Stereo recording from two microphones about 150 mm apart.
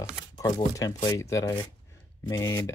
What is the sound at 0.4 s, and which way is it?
Speech, 25° left (ahead or behind).